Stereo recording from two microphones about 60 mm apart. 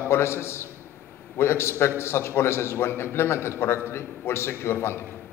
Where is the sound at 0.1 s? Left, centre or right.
Left.